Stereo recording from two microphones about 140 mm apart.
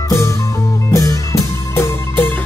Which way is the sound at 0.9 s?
25° left (ahead or behind).